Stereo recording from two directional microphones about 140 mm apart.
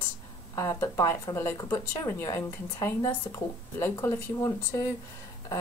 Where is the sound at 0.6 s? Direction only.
20° left (ahead or behind).